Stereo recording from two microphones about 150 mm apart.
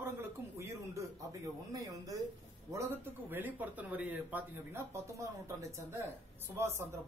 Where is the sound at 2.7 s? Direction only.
15° right (ahead or behind).